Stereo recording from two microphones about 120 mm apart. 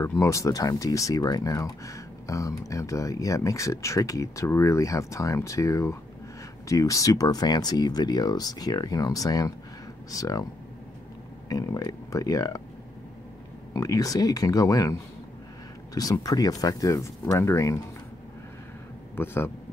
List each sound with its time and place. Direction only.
0.0 s speech: 25° left (ahead or behind)
11.4 s speech: 30° left (ahead or behind)
13.7 s speech: 30° left (ahead or behind)
19.1 s speech: 20° left (ahead or behind)